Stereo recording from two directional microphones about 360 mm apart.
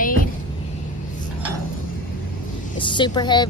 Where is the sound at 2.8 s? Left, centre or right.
Centre.